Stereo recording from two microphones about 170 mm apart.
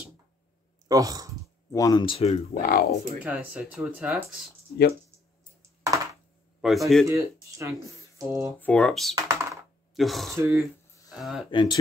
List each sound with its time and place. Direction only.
0.8 s speech: 20° right (ahead or behind)
1.7 s speech: 20° left (ahead or behind)
2.5 s speech: 65° left (ahead or behind)
3.2 s speech: 10° right (ahead or behind)
6.6 s speech: centre (ahead or behind)
7.1 s speech: 20° right (ahead or behind)
8.5 s speech: 10° left (ahead or behind)
9.1 s computer keyboard: 15° right (ahead or behind)
9.9 s speech: centre (ahead or behind)
10.3 s speech: 15° right (ahead or behind)
11.1 s speech: centre (ahead or behind)
11.5 s speech: 25° left (ahead or behind)